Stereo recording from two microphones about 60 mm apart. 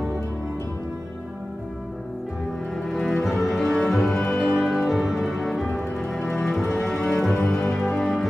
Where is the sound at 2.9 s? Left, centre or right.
Centre.